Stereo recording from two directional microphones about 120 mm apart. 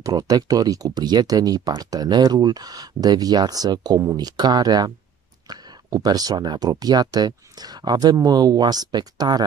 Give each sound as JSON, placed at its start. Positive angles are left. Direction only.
{"t": 0.0, "sound": "speech", "side_deg": -30}